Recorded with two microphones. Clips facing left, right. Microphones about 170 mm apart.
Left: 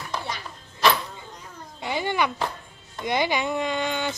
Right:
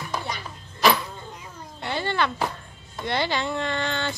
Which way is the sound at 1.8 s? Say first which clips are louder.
Left 1 dB; 10° left (ahead or behind).